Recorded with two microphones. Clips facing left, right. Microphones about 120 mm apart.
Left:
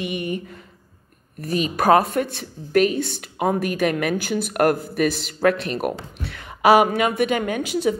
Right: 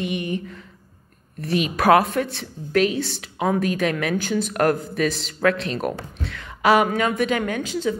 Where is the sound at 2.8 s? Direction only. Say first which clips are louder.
Left 1 dB; 50° left (ahead or behind).